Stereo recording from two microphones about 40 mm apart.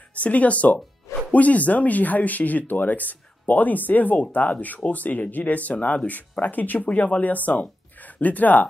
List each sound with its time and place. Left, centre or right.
0.1 s speech: left